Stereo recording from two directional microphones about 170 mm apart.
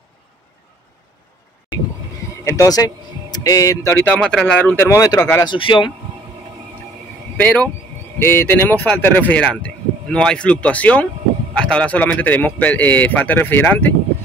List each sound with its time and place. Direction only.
2.4 s speech: 20° left (ahead or behind)
7.3 s speech: 10° left (ahead or behind)